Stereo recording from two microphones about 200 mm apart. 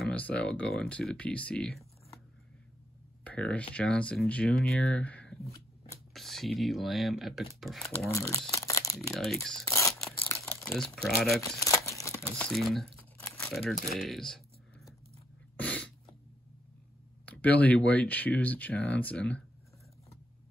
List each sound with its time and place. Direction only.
0.0 s speech: 5° left (ahead or behind)
3.3 s speech: 5° left (ahead or behind)
8.1 s speech: 15° left (ahead or behind)
8.5 s crumpling: 15° left (ahead or behind)
9.1 s speech: centre (ahead or behind)
9.7 s a sound: 15° left (ahead or behind)
10.2 s crumpling: 10° left (ahead or behind)
11.0 s speech: centre (ahead or behind)
11.9 s crumpling: 15° left (ahead or behind)
12.4 s crumpling: centre (ahead or behind)
13.7 s speech: 45° left (ahead or behind)
14.0 s computer keyboard: centre (ahead or behind)
15.5 s a sound: 5° left (ahead or behind)
17.3 s speech: 5° left (ahead or behind)